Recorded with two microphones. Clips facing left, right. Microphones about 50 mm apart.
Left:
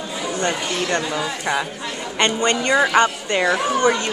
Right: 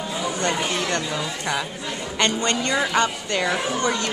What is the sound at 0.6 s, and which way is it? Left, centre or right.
Speech, centre.